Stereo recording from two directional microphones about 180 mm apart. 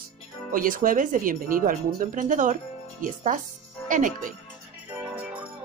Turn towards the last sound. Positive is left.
turn(degrees=-5)  # may be behind; listen again after turning